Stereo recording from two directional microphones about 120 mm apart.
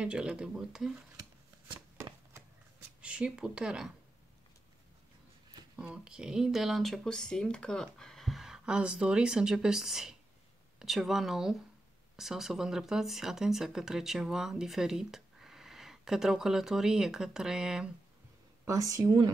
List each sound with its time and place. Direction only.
0.0 s speech: 10° right (ahead or behind)
3.0 s speech: 10° right (ahead or behind)
5.8 s speech: 5° right (ahead or behind)
18.7 s speech: 30° right (ahead or behind)